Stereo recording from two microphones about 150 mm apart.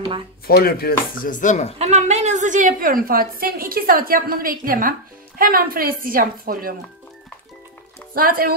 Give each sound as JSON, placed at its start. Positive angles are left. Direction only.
{"t": 0.5, "sound": "speech", "side_deg": 90}
{"t": 1.8, "sound": "a woman's voice", "side_deg": -50}
{"t": 8.1, "sound": "a woman's voice", "side_deg": -75}